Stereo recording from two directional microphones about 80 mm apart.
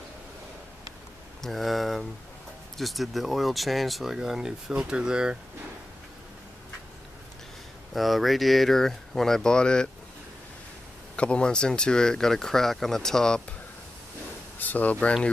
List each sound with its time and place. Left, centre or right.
1.4 s speech: centre
7.9 s speech: centre
11.1 s speech: centre
14.6 s speech: centre